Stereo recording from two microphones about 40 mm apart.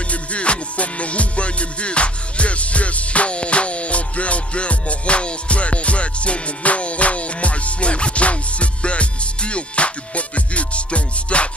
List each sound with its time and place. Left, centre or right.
0.1 s music: left